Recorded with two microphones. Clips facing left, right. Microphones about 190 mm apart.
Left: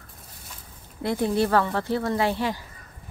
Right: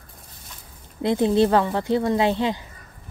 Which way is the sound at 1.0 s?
20° right (ahead or behind).